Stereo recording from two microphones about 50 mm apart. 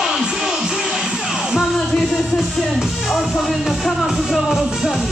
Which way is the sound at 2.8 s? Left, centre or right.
Centre.